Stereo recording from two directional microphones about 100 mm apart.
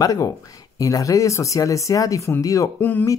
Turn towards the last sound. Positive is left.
turn(degrees=20)  # may be behind; listen again after turning